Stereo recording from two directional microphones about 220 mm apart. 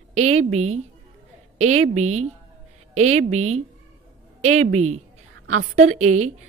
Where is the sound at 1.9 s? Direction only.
75° right (ahead or behind).